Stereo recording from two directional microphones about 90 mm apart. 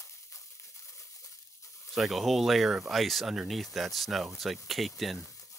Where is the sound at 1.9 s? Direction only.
Centre (ahead or behind).